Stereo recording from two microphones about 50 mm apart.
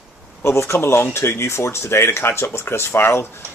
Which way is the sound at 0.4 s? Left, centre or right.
Left.